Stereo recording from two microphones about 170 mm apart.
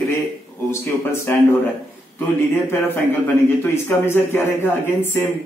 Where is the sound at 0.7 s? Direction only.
15° left (ahead or behind).